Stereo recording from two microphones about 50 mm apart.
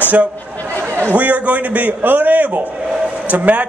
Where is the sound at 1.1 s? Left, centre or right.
Right.